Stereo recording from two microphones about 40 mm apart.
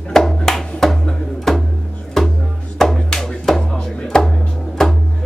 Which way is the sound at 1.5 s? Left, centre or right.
Centre.